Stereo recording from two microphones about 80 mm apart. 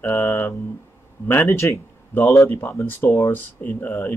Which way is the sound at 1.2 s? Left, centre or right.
Left.